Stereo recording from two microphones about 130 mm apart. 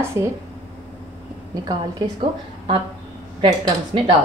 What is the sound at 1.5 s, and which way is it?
Speech, 30° right (ahead or behind).